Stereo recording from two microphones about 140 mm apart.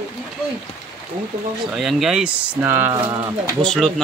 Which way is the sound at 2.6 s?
15° right (ahead or behind).